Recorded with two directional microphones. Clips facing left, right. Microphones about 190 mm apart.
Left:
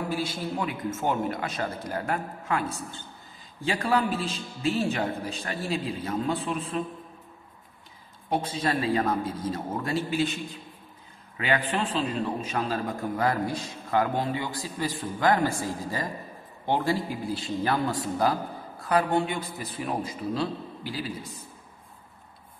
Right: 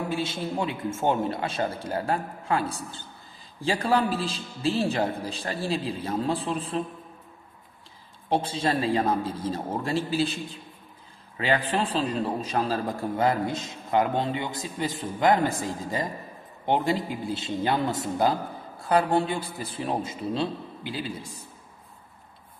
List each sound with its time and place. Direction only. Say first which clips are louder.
0.1 s a man's voice: right 1 dB; 25° right (ahead or behind)
8.3 s a man's voice: right 2 dB; 30° right (ahead or behind)